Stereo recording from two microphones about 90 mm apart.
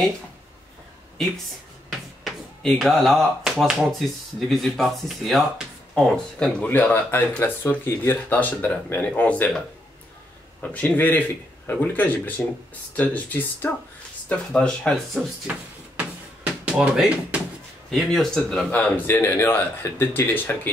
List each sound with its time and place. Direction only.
2.8 s speech: centre (ahead or behind); by 9.5 s 15° left (ahead or behind)
10.6 s speech: 15° left (ahead or behind)
16.0 s a sound: 10° right (ahead or behind)
16.8 s speech: 10° right (ahead or behind)
17.9 s speech: 5° left (ahead or behind)
18.7 s speech: 15° left (ahead or behind)